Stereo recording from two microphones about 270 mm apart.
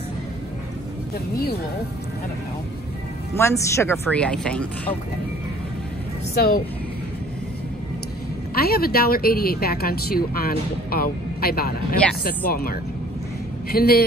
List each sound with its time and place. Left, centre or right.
3.3 s speech: centre
6.3 s speech: left
8.5 s speech: left